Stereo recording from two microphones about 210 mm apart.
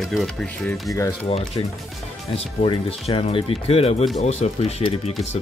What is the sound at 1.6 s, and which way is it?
Speech, 25° left (ahead or behind).